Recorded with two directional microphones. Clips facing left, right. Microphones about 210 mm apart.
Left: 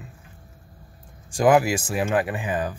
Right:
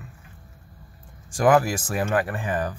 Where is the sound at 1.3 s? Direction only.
10° left (ahead or behind).